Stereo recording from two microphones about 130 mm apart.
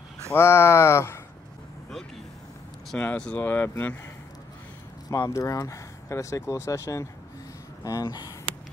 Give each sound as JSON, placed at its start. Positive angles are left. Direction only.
{"t": 0.3, "sound": "speech", "side_deg": 20}
{"t": 2.9, "sound": "speech", "side_deg": 10}
{"t": 5.1, "sound": "speech", "side_deg": 25}